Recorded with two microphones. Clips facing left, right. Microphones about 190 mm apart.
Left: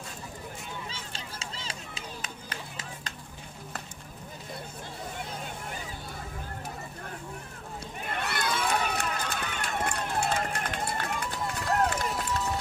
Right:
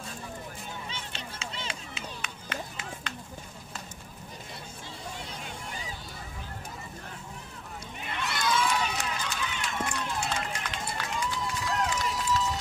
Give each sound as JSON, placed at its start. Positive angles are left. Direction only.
{"t": 0.8, "sound": "run", "side_deg": 35}
{"t": 8.0, "sound": "run", "side_deg": 50}